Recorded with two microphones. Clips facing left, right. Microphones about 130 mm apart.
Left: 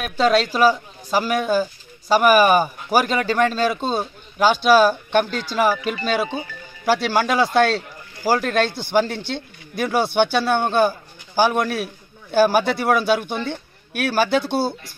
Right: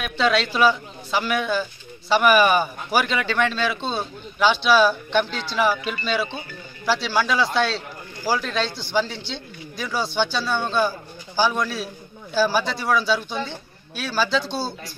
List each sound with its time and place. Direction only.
0.0 s speech: 40° left (ahead or behind)